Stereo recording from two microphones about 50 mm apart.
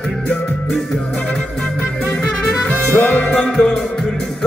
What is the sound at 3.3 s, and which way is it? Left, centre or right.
Music, centre.